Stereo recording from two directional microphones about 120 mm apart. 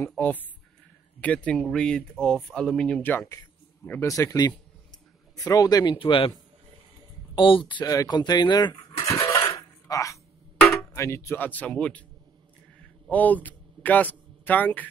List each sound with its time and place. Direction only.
0.2 s speech: 15° left (ahead or behind)
4.1 s speech: 30° left (ahead or behind)
5.9 s speech: 45° left (ahead or behind)
7.3 s speech: 45° left (ahead or behind)
9.2 s dishes: 45° left (ahead or behind)
9.5 s a sound: 25° left (ahead or behind)
10.6 s music: 15° left (ahead or behind)
13.1 s speech: 15° left (ahead or behind)